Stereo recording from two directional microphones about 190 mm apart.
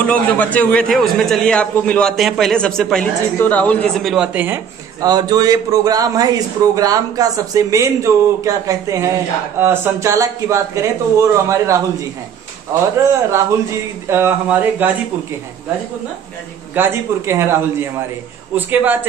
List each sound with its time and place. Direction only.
0.0 s a man's voice: 5° left (ahead or behind)
5.0 s a man's voice: 20° right (ahead or behind)
14.0 s a man's voice: 10° right (ahead or behind)
16.7 s a man's voice: 10° right (ahead or behind)